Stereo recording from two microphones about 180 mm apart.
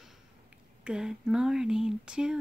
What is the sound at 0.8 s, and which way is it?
Speech, 5° right (ahead or behind).